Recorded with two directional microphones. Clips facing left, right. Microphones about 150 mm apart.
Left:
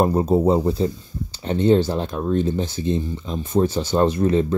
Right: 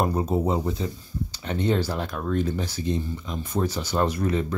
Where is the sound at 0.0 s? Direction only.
35° left (ahead or behind).